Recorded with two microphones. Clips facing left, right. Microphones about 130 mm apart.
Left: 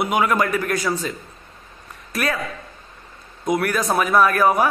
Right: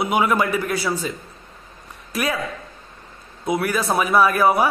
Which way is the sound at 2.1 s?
10° right (ahead or behind).